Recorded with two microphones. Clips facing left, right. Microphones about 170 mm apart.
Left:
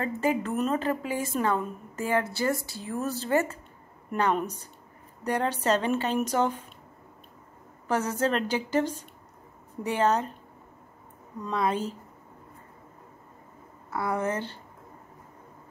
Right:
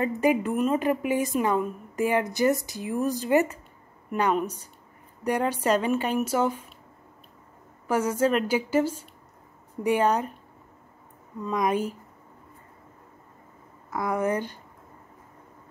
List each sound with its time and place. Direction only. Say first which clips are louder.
0.0 s a woman's voice: right 4 dB; 15° right (ahead or behind)
7.9 s a woman's voice: right 3 dB; 10° right (ahead or behind)
11.5 s a woman's voice: right 2 dB; 15° right (ahead or behind)
13.8 s a woman's voice: right 2 dB; 15° right (ahead or behind)